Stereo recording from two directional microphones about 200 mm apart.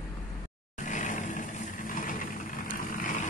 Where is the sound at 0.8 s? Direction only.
40° left (ahead or behind).